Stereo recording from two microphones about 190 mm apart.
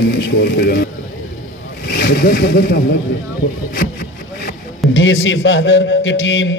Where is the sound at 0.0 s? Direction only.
60° left (ahead or behind).